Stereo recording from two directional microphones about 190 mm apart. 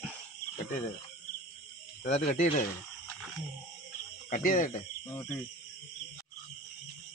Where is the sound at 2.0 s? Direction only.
35° left (ahead or behind).